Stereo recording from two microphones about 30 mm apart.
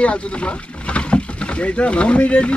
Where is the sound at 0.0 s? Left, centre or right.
Left.